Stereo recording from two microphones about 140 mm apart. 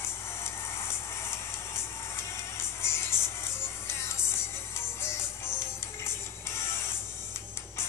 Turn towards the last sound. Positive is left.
turn(degrees=20)  # may be behind; listen again after turning